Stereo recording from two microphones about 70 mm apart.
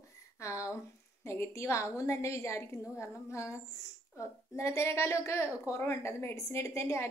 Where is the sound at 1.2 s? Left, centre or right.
Left.